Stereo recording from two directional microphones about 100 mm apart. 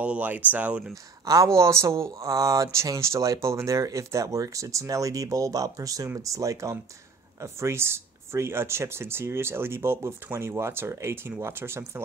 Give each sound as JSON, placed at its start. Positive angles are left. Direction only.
{"t": 0.0, "sound": "speech", "side_deg": -15}
{"t": 1.2, "sound": "speech", "side_deg": -35}